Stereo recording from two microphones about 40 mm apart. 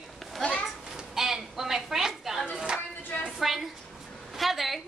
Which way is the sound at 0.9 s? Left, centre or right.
Centre.